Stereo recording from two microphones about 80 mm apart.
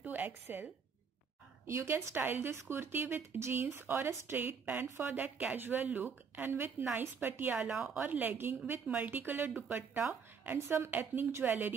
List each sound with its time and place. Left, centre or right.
0.0 s a sound: right
0.3 s speech: right
1.7 s a woman's voice: right
4.4 s speech: right
7.6 s speech: centre
7.9 s speech: right